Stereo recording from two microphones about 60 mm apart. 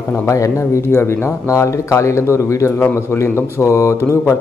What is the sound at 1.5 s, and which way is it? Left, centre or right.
Speech, left.